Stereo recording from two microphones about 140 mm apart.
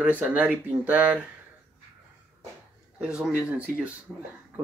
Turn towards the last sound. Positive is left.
turn(degrees=-10)  # may be behind; listen again after turning